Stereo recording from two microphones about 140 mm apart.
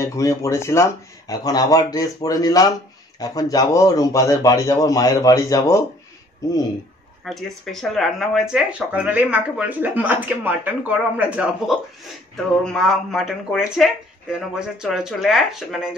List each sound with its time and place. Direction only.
0.0 s speech: 20° left (ahead or behind)
7.2 s speech: centre (ahead or behind)
12.7 s speech: centre (ahead or behind)